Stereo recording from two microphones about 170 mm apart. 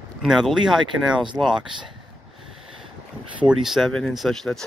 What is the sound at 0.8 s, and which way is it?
Speech, 25° right (ahead or behind).